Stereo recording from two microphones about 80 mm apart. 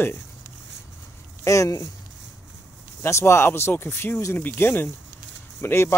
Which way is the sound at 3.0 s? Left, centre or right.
Left.